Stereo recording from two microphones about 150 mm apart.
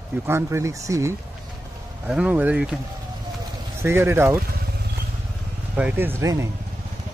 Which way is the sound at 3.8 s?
15° right (ahead or behind).